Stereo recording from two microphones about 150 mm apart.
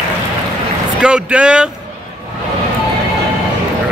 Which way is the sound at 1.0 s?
5° right (ahead or behind).